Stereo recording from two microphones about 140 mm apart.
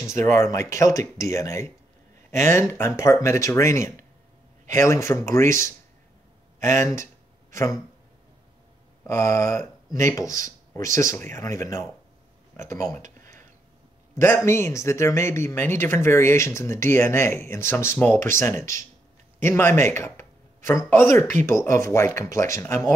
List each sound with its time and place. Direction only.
0.0 s speech: 20° left (ahead or behind)
9.0 s speech: 20° left (ahead or behind)
13.0 s a sound: 70° right (ahead or behind)
14.1 s speech: 20° left (ahead or behind)